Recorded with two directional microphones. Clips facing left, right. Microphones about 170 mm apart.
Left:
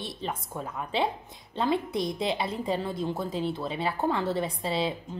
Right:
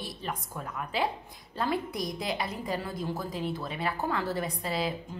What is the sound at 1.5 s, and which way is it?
A woman's voice, 25° left (ahead or behind).